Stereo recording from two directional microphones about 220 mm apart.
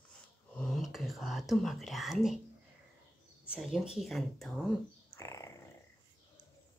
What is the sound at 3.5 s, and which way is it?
Speech, centre (ahead or behind).